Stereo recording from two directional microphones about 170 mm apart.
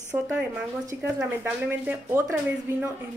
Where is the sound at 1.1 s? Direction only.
10° right (ahead or behind).